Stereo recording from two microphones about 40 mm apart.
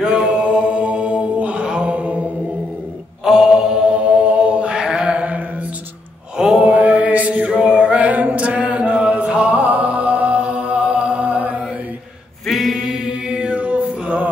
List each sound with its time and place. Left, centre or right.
0.0 s mantra: centre
0.4 s music: right
1.9 s mantra: right
3.3 s mantra: centre
6.3 s mantra: centre
6.6 s chant: right
7.4 s chant: right
9.5 s music: right
12.4 s a sound: centre
13.3 s music: right